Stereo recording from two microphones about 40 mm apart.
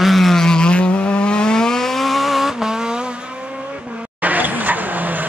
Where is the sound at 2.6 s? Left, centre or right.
Centre.